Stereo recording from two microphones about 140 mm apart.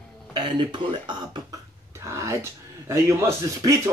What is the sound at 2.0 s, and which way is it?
Speech, 20° right (ahead or behind).